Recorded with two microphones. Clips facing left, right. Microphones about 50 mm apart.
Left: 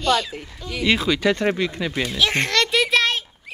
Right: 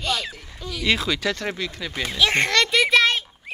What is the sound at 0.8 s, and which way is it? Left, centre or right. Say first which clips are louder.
Speech: left 3 dB; centre.